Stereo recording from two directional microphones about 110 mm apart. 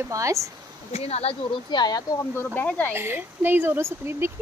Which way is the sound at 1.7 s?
40° left (ahead or behind).